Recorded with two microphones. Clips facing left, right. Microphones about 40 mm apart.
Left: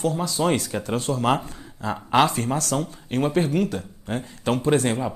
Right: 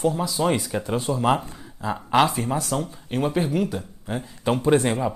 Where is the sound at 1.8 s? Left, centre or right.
Centre.